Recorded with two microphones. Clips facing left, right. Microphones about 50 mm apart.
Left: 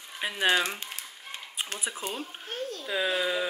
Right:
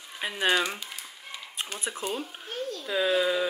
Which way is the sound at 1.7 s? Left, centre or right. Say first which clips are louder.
Right 1 dB; centre.